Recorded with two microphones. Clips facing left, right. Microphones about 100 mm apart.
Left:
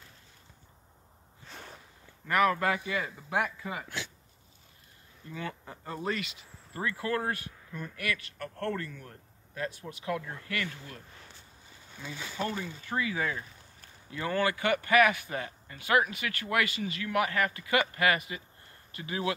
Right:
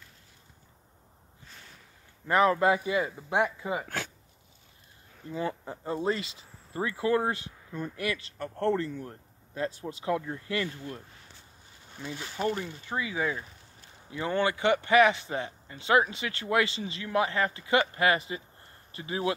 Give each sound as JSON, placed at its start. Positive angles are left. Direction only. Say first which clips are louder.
{"t": 2.2, "sound": "speech", "louder": "right 3 dB", "side_deg": -25}
{"t": 3.8, "sound": "speech", "louder": "right 4 dB", "side_deg": -50}
{"t": 5.3, "sound": "speech", "louder": "right 6 dB", "side_deg": -30}
{"t": 12.4, "sound": "speech", "louder": "right 4 dB", "side_deg": -15}